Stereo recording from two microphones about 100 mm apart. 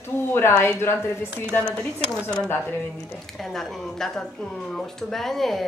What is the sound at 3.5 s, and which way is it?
Speech, 5° left (ahead or behind).